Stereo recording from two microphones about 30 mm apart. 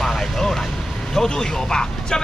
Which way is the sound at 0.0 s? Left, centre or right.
Centre.